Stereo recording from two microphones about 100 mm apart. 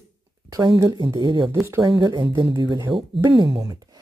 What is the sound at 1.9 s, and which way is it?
Speech, 55° right (ahead or behind).